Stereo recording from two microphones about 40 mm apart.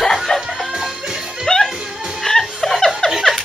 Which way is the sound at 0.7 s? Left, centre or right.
Centre.